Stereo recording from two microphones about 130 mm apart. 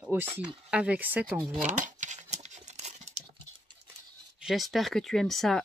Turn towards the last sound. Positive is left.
turn(degrees=0)  # may be behind; listen again after turning